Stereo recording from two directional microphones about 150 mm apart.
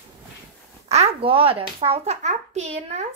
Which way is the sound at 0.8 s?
45° right (ahead or behind).